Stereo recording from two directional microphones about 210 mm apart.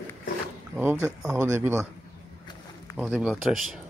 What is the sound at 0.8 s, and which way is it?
Speech, 10° right (ahead or behind).